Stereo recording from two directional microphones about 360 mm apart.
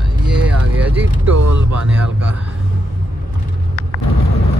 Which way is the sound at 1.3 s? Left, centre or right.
Right.